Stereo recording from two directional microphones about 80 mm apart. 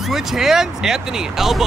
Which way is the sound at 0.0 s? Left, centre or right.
Centre.